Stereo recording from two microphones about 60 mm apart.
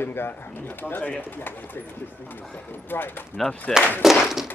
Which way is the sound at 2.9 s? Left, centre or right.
Left.